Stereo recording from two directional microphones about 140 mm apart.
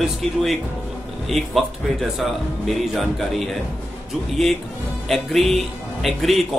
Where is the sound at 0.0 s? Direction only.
Centre (ahead or behind).